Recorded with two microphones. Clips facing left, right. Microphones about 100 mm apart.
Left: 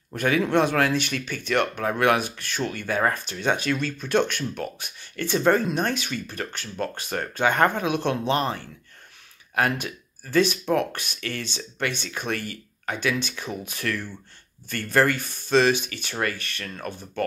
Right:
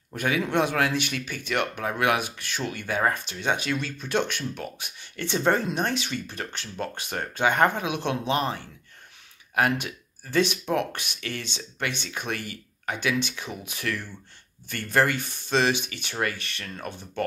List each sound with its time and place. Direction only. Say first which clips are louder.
0.1 s a man's voice: left 4 dB; 15° right (ahead or behind)